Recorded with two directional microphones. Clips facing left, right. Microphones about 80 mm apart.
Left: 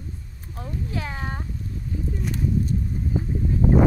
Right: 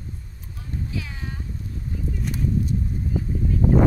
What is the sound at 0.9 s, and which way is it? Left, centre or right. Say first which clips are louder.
Speech: left 3 dB; left.